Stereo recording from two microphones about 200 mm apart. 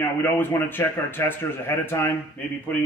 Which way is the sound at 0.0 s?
10° left (ahead or behind).